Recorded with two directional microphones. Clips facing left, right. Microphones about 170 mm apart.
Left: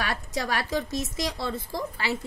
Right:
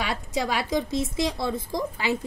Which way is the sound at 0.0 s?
10° right (ahead or behind).